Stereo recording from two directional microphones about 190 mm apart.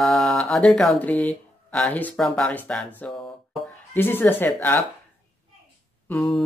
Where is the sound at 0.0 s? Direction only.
Centre (ahead or behind).